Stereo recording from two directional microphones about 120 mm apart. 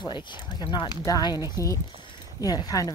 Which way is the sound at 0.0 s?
40° left (ahead or behind).